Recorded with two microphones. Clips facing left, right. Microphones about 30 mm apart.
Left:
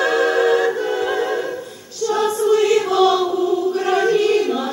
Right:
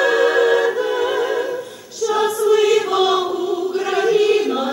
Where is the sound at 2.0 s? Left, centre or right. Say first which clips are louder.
Right 1 dB; centre.